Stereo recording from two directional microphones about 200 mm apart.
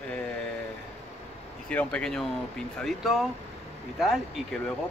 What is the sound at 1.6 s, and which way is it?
Speech, 5° left (ahead or behind).